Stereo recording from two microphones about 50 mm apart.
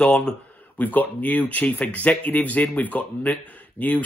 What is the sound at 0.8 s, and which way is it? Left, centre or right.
Speech, left.